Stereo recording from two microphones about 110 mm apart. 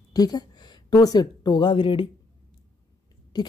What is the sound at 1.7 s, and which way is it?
Speech, 50° left (ahead or behind).